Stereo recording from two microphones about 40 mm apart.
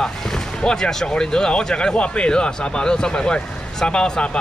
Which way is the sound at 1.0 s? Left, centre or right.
Centre.